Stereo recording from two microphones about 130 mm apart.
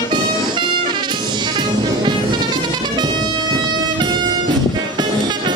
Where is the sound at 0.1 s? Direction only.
35° right (ahead or behind).